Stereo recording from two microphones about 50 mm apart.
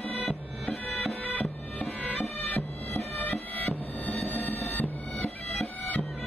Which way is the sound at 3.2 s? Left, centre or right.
Left.